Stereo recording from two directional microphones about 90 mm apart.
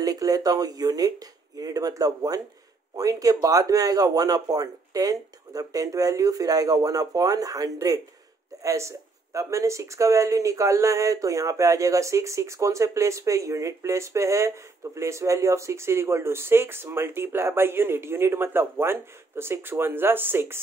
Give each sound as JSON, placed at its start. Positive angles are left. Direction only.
{"t": 0.0, "sound": "a man's voice", "side_deg": -40}